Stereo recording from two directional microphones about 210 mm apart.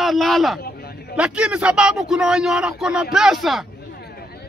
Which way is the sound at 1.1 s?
5° right (ahead or behind).